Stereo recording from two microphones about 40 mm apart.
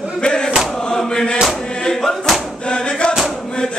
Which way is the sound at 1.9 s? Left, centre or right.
Centre.